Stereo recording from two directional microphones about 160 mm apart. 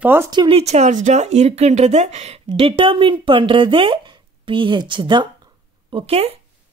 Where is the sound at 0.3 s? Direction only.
30° right (ahead or behind).